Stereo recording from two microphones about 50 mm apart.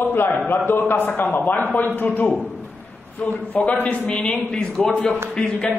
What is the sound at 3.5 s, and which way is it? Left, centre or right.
Speech, left.